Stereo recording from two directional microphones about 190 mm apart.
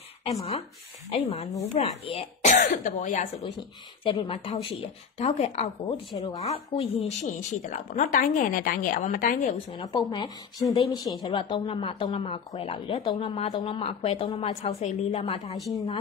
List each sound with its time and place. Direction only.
0.2 s a woman's voice: 35° left (ahead or behind)
4.0 s a woman's voice: 20° left (ahead or behind); by 9.5 s 45° left (ahead or behind)
9.7 s speech: 25° left (ahead or behind)